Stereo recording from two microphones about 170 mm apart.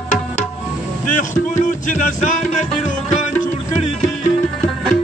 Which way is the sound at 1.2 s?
45° left (ahead or behind).